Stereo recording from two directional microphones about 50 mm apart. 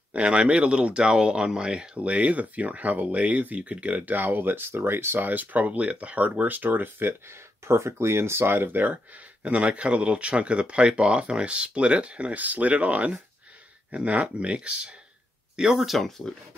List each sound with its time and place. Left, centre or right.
0.1 s speech: right
15.5 s speech: centre
16.0 s speech: centre